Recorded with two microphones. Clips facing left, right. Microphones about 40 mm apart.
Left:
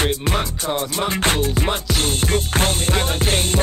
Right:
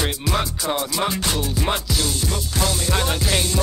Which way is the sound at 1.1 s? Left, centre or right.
Left.